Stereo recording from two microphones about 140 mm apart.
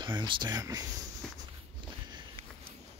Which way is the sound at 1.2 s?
5° left (ahead or behind).